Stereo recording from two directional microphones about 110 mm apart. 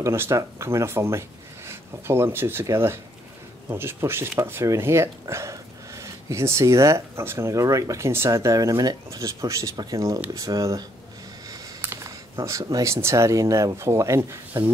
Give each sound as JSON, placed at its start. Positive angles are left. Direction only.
{"t": 0.0, "sound": "speech", "side_deg": -25}
{"t": 11.8, "sound": "a sound", "side_deg": -20}
{"t": 12.4, "sound": "speech", "side_deg": -35}